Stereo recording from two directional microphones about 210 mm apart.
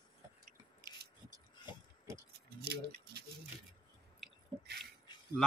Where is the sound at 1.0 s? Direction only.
50° right (ahead or behind).